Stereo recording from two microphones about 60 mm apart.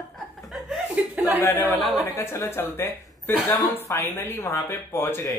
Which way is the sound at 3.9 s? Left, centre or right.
Left.